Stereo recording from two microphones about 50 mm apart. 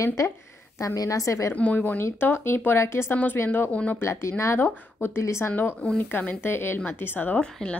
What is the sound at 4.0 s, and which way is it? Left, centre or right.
Speech, left.